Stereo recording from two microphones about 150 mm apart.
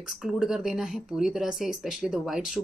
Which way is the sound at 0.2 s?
5° right (ahead or behind).